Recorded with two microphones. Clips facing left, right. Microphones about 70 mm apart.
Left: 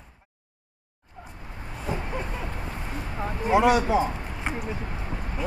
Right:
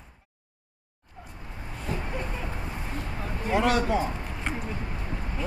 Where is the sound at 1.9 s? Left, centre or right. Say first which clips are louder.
Left 2 dB; centre.